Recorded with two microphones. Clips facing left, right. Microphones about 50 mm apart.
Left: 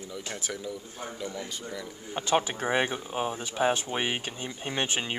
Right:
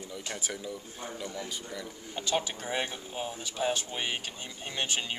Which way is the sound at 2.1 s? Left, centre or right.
Left.